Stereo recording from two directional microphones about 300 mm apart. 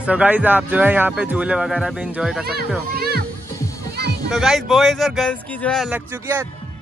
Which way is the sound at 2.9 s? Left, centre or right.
Right.